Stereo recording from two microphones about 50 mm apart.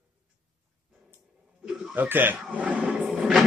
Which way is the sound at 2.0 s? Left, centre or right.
Right.